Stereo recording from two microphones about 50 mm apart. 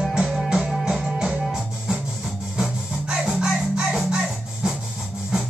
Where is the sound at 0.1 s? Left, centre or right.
Centre.